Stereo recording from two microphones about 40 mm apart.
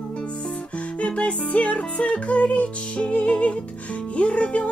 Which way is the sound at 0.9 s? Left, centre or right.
Left.